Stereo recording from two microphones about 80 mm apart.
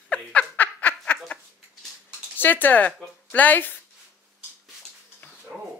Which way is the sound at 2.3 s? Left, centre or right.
Left.